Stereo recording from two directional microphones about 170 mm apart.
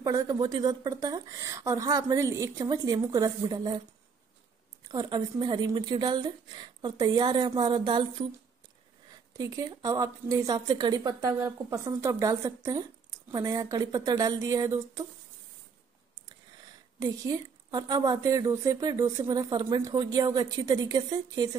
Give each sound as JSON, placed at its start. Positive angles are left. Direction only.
{"t": 0.0, "sound": "speech", "side_deg": -20}
{"t": 4.8, "sound": "speech", "side_deg": -25}
{"t": 9.4, "sound": "speech", "side_deg": -20}
{"t": 17.0, "sound": "speech", "side_deg": -20}